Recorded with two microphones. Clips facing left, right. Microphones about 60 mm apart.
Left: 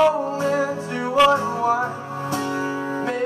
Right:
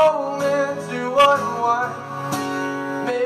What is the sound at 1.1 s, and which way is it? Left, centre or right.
Music, centre.